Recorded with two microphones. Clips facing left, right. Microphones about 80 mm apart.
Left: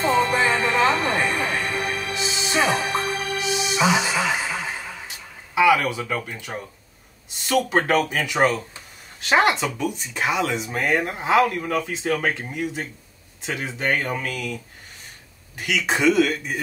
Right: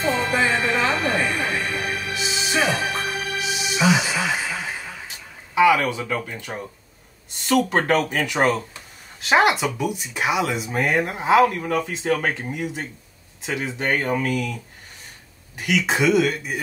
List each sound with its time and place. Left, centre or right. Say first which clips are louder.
0.0 s music: left 2 dB; left
5.5 s speech: right 1 dB; centre
15.5 s speech: right 2 dB; centre